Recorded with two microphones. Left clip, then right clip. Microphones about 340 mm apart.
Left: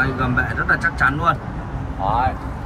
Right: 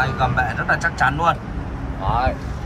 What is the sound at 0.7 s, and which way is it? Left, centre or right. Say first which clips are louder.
Speech: left 2 dB; centre.